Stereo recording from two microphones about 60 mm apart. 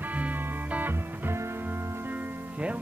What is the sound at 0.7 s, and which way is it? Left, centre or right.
Music, right.